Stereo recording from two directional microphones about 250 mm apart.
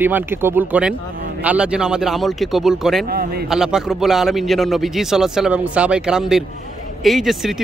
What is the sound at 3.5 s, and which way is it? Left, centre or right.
Speech, centre.